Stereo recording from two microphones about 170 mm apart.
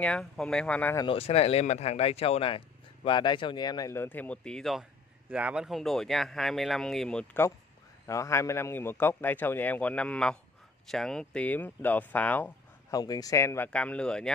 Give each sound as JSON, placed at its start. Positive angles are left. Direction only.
{"t": 0.0, "sound": "speech", "side_deg": 5}
{"t": 0.9, "sound": "speech", "side_deg": 30}
{"t": 8.1, "sound": "a man's voice", "side_deg": 15}
{"t": 12.9, "sound": "speech", "side_deg": 20}
{"t": 13.7, "sound": "speech", "side_deg": 5}